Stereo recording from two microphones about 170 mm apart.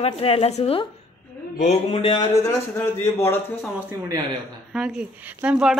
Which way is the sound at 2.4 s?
15° left (ahead or behind).